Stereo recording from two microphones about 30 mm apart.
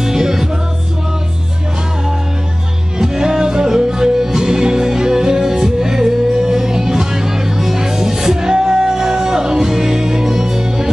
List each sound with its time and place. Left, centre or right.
0.0 s music: centre
3.0 s music: right